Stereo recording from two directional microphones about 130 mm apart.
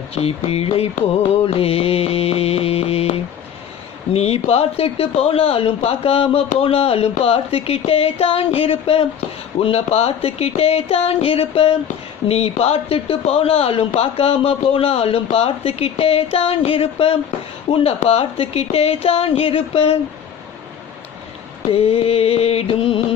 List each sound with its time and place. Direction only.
0.1 s speech: 50° left (ahead or behind)
21.6 s speech: 50° left (ahead or behind)